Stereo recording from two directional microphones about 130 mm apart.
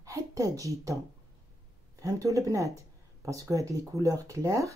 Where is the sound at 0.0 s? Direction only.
25° right (ahead or behind).